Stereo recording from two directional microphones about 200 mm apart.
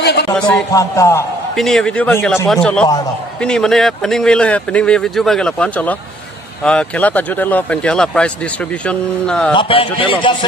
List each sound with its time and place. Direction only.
0.0 s a sound: 55° left (ahead or behind)
0.4 s speech: 5° left (ahead or behind)
0.7 s a man's voice: 15° left (ahead or behind)
1.6 s speech: centre (ahead or behind)
9.5 s a man's voice: 25° left (ahead or behind)